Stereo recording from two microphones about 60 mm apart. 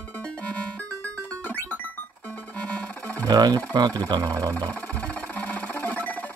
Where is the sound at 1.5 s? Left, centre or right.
Left.